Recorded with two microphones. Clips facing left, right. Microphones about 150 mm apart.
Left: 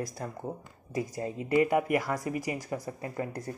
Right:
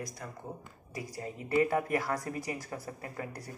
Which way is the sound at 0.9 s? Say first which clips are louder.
Left 7 dB; 25° left (ahead or behind).